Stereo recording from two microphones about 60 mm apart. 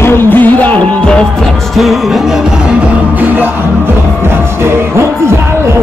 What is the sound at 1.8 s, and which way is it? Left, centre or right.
Music, centre.